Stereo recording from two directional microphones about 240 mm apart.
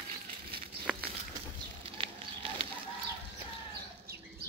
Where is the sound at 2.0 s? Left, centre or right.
Right.